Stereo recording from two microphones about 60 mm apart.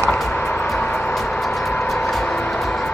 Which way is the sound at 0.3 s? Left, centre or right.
Centre.